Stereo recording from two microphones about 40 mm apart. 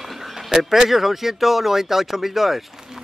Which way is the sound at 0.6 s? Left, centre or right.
Centre.